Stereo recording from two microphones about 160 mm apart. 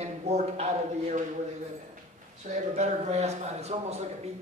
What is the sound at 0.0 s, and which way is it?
A man's voice, 45° right (ahead or behind).